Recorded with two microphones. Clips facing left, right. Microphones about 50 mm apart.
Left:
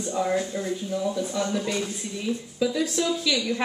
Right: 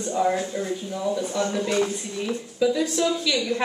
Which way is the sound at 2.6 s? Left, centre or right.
Centre.